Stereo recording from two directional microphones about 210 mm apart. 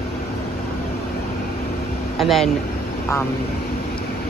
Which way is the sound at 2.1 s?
Centre (ahead or behind).